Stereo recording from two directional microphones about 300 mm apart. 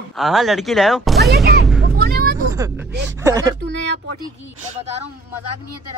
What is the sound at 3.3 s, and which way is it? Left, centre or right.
Speech, centre.